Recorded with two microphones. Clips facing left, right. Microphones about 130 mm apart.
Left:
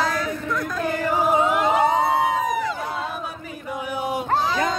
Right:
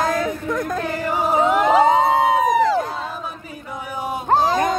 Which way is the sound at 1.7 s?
90° right.